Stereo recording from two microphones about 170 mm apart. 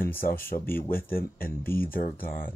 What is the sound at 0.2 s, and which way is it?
Speech, 60° left (ahead or behind).